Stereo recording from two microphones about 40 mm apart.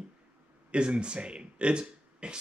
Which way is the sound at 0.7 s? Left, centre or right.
Right.